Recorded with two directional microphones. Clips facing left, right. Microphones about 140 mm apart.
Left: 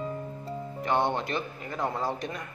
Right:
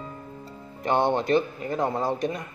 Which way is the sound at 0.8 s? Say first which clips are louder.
Right 4 dB; 20° right (ahead or behind).